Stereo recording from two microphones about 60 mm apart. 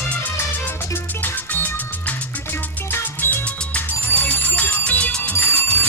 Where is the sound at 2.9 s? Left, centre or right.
Left.